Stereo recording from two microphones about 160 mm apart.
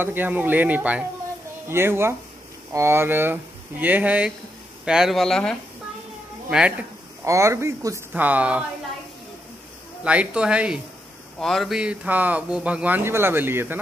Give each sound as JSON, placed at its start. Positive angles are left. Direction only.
{"t": 0.0, "sound": "speech", "side_deg": -10}
{"t": 7.2, "sound": "speech", "side_deg": -20}
{"t": 10.0, "sound": "speech", "side_deg": -5}